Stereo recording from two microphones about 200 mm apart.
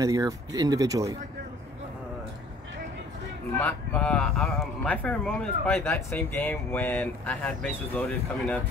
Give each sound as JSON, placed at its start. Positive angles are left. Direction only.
{"t": 0.0, "sound": "speech", "side_deg": -15}
{"t": 3.5, "sound": "speech", "side_deg": 5}